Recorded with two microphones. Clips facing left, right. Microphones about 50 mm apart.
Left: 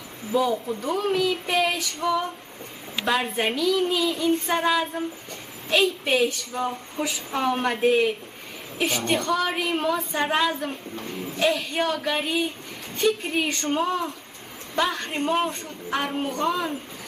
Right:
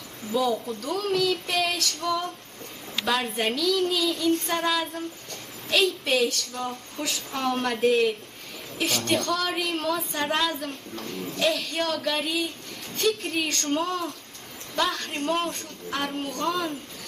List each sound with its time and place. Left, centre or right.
0.3 s a woman's voice: centre
0.7 s a woman's voice: centre